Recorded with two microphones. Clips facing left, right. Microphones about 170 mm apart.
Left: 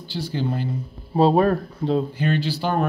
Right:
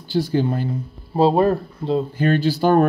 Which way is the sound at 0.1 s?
45° right (ahead or behind).